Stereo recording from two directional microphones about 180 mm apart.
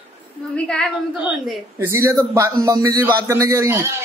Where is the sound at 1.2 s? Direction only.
10° right (ahead or behind).